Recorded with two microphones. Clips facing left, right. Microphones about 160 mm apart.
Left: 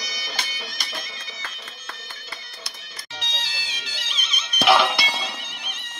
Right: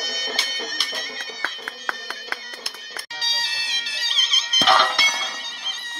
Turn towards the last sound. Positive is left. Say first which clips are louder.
# left 2 dB
turn(degrees=10)  # may be behind; listen again after turning